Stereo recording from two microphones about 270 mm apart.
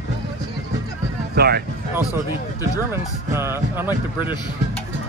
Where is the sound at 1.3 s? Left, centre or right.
Right.